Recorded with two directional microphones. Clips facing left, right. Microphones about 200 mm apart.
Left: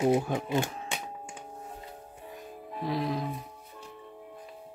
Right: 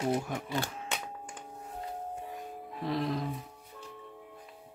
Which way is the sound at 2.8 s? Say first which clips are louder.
Left 1 dB; centre (ahead or behind).